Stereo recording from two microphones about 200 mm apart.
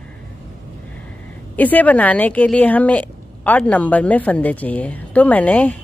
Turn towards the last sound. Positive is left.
turn(degrees=10)  # may be behind; listen again after turning